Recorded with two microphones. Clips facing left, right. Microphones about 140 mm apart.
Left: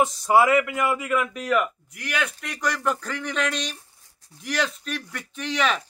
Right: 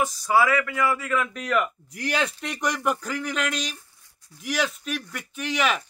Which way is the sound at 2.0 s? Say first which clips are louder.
Right 3 dB; 35° right (ahead or behind).